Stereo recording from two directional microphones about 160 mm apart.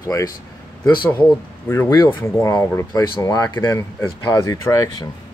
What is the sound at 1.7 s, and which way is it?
Speech, 15° left (ahead or behind).